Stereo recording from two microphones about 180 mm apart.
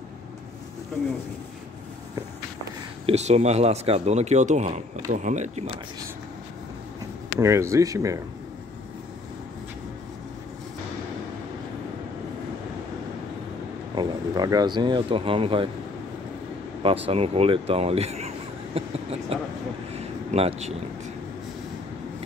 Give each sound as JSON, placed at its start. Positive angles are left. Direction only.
{"t": 1.0, "sound": "speech", "side_deg": 15}
{"t": 3.1, "sound": "speech", "side_deg": -40}
{"t": 7.3, "sound": "speech", "side_deg": -15}
{"t": 13.9, "sound": "speech", "side_deg": -20}
{"t": 16.8, "sound": "speech", "side_deg": -30}
{"t": 20.0, "sound": "a sound", "side_deg": -35}